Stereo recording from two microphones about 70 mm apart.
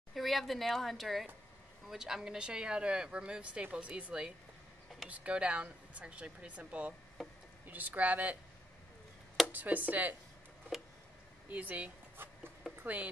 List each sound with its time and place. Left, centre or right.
0.1 s a woman's voice: centre
7.2 s a sound: centre
7.6 s speech: right
9.5 s speech: right
11.4 s speech: right